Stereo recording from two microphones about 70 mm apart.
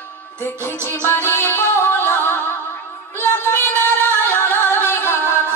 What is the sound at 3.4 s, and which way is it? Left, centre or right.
Singing, left.